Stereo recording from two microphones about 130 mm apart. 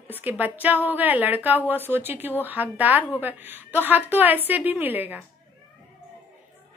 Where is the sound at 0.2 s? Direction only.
15° right (ahead or behind).